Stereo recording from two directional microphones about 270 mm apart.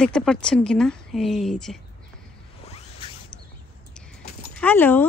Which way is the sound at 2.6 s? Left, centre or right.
Left.